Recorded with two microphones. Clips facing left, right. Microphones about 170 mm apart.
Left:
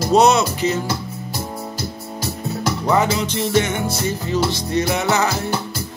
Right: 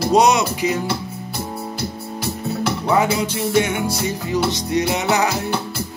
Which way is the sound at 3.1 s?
10° right (ahead or behind).